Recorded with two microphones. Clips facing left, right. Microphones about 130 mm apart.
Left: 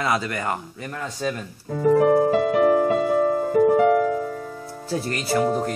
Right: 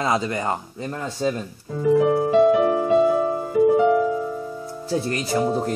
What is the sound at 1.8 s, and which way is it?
Music, 45° left (ahead or behind).